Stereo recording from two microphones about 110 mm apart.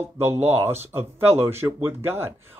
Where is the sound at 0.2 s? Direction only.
20° right (ahead or behind).